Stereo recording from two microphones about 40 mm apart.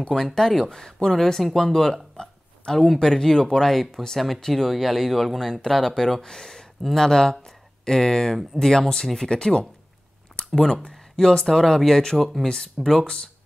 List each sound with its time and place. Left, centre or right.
0.1 s speech: centre
2.1 s a sound: centre
3.0 s speech: centre
3.7 s speech: centre